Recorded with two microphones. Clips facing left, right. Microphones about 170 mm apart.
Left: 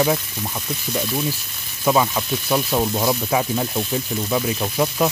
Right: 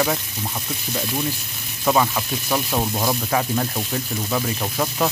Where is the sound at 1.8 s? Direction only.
Centre (ahead or behind).